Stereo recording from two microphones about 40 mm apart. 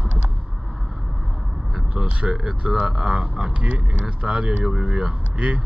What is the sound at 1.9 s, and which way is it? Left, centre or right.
Speech, right.